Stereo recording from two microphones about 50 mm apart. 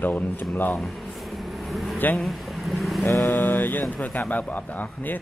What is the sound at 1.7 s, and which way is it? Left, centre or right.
Speech, centre.